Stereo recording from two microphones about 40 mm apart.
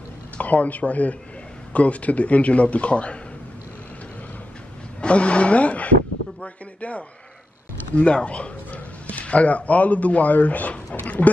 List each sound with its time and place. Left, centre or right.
0.4 s speech: left
5.0 s speech: left